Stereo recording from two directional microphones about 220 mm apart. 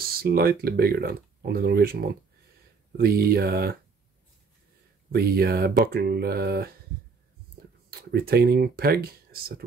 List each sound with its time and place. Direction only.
0.2 s speech: 45° right (ahead or behind)
5.1 s speech: 45° right (ahead or behind)
8.0 s speech: 45° right (ahead or behind)